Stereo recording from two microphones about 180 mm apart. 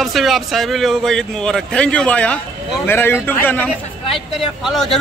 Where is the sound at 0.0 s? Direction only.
Centre (ahead or behind).